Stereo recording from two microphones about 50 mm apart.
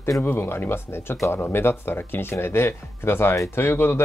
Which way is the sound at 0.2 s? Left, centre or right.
Left.